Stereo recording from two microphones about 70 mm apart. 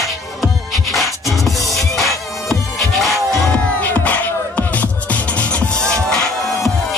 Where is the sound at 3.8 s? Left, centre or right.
Left.